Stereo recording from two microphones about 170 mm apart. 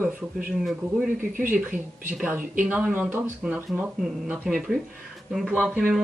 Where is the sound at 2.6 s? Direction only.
10° right (ahead or behind).